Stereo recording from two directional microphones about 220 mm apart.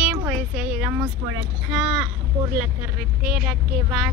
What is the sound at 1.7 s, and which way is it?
Speech, 5° right (ahead or behind).